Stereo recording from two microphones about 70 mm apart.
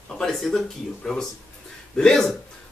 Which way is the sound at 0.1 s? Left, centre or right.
Centre.